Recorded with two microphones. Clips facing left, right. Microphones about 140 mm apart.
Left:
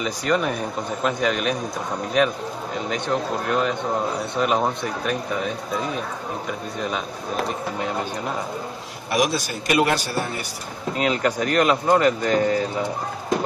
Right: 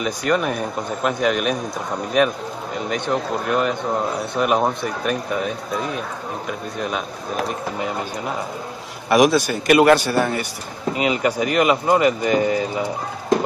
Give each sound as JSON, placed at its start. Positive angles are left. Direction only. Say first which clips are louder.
{"t": 0.0, "sound": "speech", "louder": "right 2 dB", "side_deg": -5}
{"t": 2.9, "sound": "speech", "louder": "right 2 dB", "side_deg": -5}
{"t": 7.4, "sound": "speech", "louder": "right 1 dB", "side_deg": -5}
{"t": 9.1, "sound": "a man's voice", "louder": "right 7 dB", "side_deg": -60}
{"t": 11.0, "sound": "speech", "louder": "right 1 dB", "side_deg": -5}